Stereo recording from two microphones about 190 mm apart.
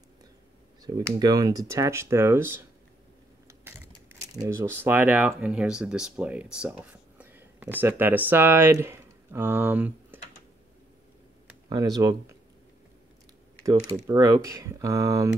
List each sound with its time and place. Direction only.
0.8 s speech: 20° right (ahead or behind)
3.7 s a sound: 10° right (ahead or behind)
4.4 s speech: 15° right (ahead or behind)
11.7 s speech: 20° right (ahead or behind)
14.0 s speech: 15° right (ahead or behind)